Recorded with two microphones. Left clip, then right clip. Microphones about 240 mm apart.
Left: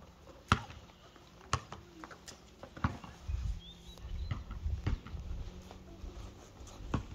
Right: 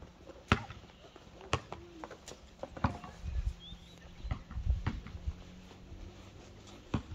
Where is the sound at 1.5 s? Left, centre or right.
Right.